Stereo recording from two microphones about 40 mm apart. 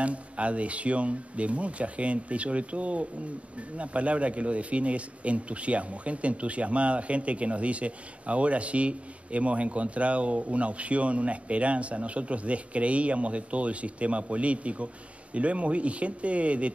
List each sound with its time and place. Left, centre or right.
0.0 s speech: right